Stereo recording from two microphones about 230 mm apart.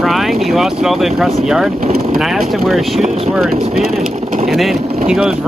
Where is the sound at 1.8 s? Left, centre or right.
Right.